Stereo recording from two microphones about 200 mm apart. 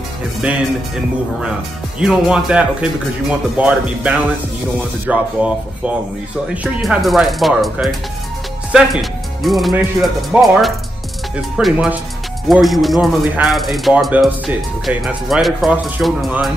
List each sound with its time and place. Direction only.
0.4 s speech: 5° right (ahead or behind)
2.0 s speech: 5° right (ahead or behind)
6.5 s speech: 5° right (ahead or behind)